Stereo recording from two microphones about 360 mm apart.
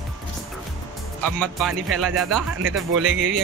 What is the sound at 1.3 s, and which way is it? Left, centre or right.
Speech, centre.